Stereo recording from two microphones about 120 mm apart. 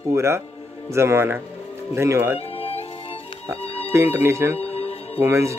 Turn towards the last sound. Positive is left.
turn(degrees=-25)  # may be behind; listen again after turning